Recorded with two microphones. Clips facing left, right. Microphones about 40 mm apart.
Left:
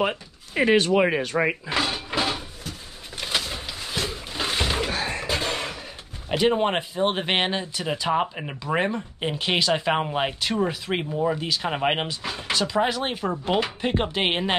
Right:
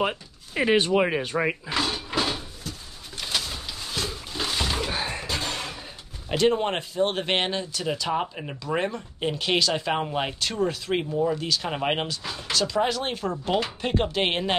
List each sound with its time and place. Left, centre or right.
0.6 s speech: centre
1.4 s drawer open or close: centre
3.2 s a sound: left
5.2 s music: centre
6.2 s speech: centre